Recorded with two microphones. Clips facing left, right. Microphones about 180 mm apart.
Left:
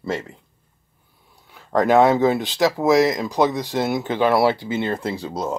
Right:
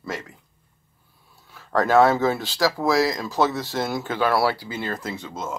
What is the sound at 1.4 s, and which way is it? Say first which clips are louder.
Speech: left 3 dB; 15° left (ahead or behind).